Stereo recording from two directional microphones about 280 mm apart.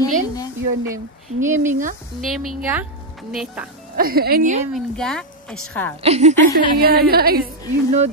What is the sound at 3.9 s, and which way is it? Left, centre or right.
Music, right.